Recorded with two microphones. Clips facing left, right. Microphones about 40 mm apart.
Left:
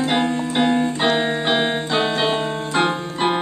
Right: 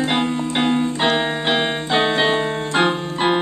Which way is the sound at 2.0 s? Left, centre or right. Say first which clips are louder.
Right 4 dB; centre.